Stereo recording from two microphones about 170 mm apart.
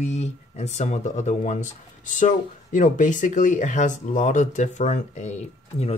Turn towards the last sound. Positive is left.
turn(degrees=40)  # may be behind; listen again after turning